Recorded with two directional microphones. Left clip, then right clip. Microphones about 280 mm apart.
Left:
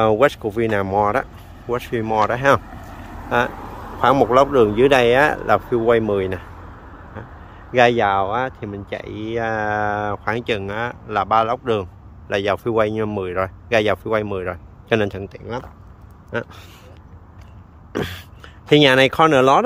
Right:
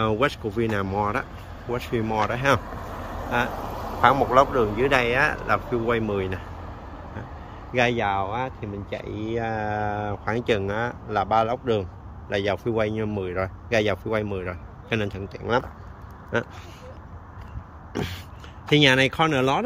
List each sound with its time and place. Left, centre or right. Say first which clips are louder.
0.0 s speech: left 8 dB; centre
3.5 s vehicle: right 2 dB; right
4.0 s speech: left 4 dB; left
7.7 s speech: left 8 dB; centre
17.9 s speech: left 6 dB; centre